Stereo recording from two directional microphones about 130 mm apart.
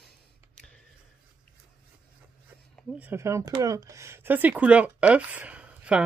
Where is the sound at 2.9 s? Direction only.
15° right (ahead or behind).